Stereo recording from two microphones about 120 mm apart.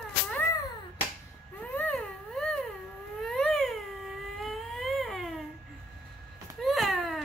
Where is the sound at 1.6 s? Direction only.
10° left (ahead or behind).